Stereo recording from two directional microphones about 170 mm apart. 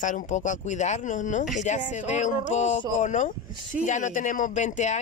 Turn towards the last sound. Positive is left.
turn(degrees=45)  # may be behind; listen again after turning